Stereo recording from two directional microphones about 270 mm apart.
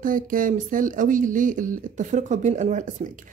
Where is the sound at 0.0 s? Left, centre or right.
Right.